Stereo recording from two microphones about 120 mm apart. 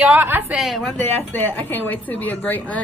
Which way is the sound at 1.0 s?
15° left (ahead or behind).